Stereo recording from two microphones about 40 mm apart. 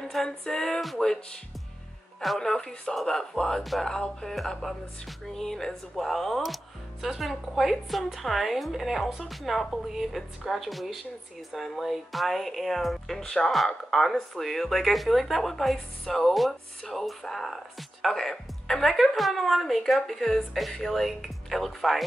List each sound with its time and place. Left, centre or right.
0.4 s a sound: centre
4.5 s speech: centre
13.2 s a sound: centre
13.8 s speech: centre
18.0 s speech: centre
18.9 s speech: centre